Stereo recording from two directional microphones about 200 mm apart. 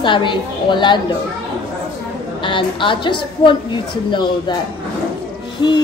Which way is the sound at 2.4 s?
25° left (ahead or behind).